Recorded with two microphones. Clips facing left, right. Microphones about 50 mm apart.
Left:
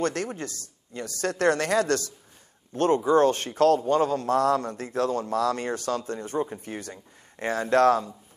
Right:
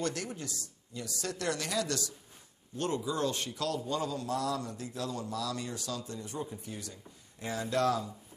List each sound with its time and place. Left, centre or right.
0.0 s a man's voice: left